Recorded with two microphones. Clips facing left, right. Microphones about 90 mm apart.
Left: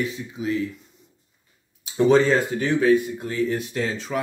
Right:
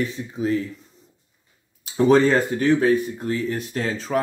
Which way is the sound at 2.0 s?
45° right (ahead or behind).